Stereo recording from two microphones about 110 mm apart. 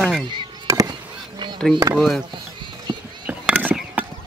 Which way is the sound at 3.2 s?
15° right (ahead or behind).